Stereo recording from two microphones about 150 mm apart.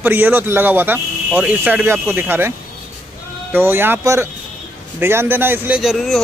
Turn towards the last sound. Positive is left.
turn(degrees=0)  # may be behind; listen again after turning